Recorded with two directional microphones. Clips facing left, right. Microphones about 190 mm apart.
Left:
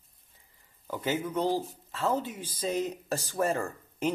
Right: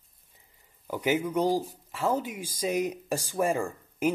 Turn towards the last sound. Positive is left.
turn(degrees=-10)  # may be behind; listen again after turning